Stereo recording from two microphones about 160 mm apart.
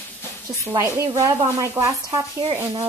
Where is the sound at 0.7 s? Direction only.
20° right (ahead or behind).